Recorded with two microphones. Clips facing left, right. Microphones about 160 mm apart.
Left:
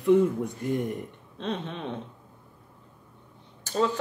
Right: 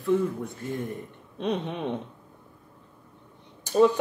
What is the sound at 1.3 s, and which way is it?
Speech, 15° right (ahead or behind).